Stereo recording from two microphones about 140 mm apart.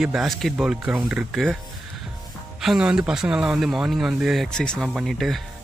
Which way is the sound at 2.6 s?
5° right (ahead or behind).